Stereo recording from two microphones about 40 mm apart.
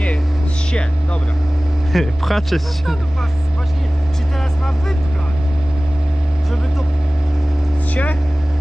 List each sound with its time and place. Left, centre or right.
1.9 s speech: centre
7.9 s vehicle: left